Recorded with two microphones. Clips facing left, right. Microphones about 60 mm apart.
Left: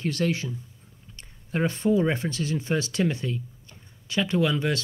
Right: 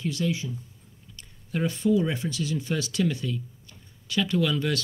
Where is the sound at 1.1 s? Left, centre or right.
Left.